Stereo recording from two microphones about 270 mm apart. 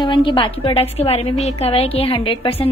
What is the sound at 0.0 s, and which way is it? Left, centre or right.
A woman's voice, centre.